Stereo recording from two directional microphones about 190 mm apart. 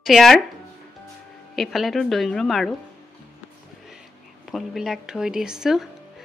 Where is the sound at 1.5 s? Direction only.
Centre (ahead or behind).